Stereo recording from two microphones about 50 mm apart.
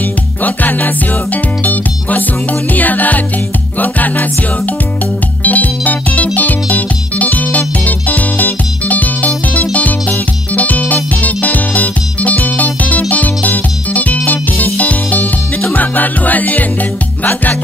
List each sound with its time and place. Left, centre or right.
0.4 s music: left
5.4 s music: left